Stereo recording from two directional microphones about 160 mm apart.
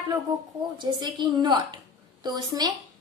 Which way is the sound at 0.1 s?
25° right (ahead or behind).